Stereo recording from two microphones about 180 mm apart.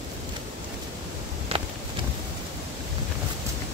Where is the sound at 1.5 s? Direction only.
35° right (ahead or behind).